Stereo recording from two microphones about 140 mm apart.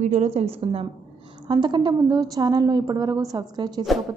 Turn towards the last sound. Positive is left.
turn(degrees=-30)  # may be behind; listen again after turning